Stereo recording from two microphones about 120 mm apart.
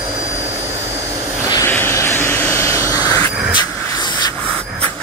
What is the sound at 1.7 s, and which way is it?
Vehicle, 20° left (ahead or behind).